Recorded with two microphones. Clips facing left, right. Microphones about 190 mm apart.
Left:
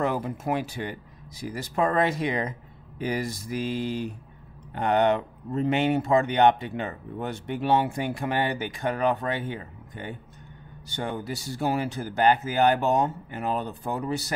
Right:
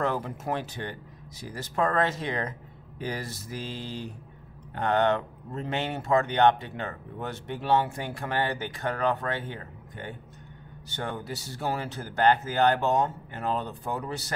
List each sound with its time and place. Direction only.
0.0 s speech: 10° left (ahead or behind)